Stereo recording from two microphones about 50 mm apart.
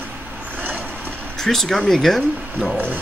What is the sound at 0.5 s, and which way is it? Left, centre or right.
Vehicle, right.